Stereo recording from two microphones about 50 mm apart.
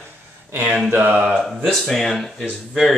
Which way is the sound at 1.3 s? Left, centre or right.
Centre.